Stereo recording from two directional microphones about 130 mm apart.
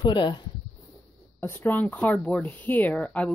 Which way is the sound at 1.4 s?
15° left (ahead or behind).